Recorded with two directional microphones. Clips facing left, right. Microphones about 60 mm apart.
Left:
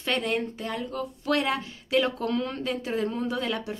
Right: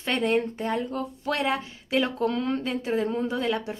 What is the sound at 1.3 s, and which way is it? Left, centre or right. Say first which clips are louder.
Speech: left 1 dB; centre.